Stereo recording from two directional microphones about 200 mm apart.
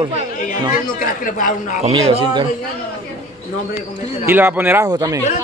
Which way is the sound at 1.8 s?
30° right (ahead or behind).